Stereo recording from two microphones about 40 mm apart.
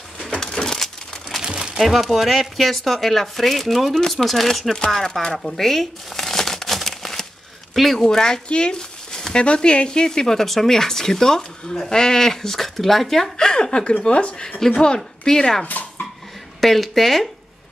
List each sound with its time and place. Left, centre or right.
0.6 s a sound: centre
1.4 s crumpling: right
1.8 s speech: centre
5.4 s crumpling: centre
7.7 s speech: centre
8.0 s speech: centre
8.5 s a sound: left
9.4 s speech: left; by 13.3 s centre
13.4 s a woman's voice: centre
16.6 s speech: centre